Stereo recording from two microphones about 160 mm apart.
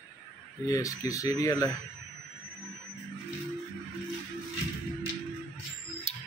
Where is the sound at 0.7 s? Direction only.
20° left (ahead or behind).